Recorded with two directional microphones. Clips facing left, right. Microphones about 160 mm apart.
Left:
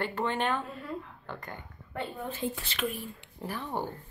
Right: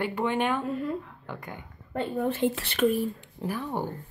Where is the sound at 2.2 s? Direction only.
65° right (ahead or behind).